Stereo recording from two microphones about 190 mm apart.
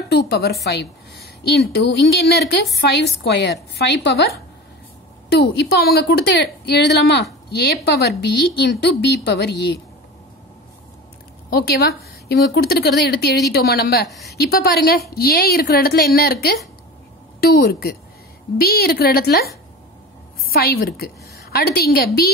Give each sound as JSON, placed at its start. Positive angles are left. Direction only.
{"t": 0.1, "sound": "a woman's voice", "side_deg": 60}
{"t": 5.3, "sound": "a woman's voice", "side_deg": 60}
{"t": 11.5, "sound": "a woman's voice", "side_deg": 55}
{"t": 20.4, "sound": "a woman's voice", "side_deg": 55}